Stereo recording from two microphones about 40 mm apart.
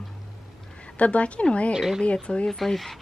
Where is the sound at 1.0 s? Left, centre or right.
Left.